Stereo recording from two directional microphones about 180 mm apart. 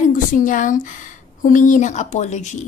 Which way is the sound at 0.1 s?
45° left (ahead or behind).